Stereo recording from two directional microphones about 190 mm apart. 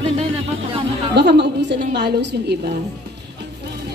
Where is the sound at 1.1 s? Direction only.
60° right (ahead or behind).